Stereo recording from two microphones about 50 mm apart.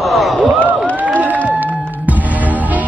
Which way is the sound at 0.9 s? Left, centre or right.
Right.